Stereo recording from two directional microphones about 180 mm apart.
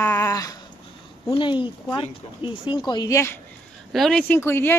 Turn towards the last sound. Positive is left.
turn(degrees=10)  # may be behind; listen again after turning